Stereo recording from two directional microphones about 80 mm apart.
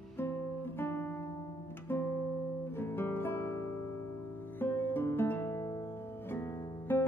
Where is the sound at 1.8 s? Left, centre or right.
Left.